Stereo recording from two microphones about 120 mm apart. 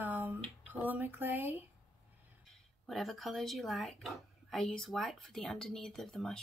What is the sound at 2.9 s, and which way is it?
Speech, centre (ahead or behind).